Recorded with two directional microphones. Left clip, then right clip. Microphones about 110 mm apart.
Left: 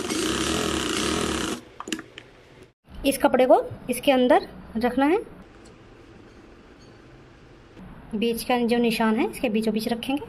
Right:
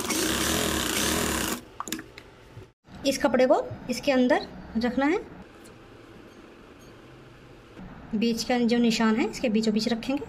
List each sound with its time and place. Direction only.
0.0 s a sound: 25° right (ahead or behind)
3.0 s a woman's voice: 55° left (ahead or behind)
8.2 s a woman's voice: 40° left (ahead or behind)